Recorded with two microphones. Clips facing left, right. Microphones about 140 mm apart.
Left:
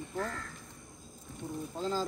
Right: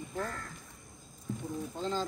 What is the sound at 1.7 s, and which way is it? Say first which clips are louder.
Speech: left 1 dB; centre (ahead or behind).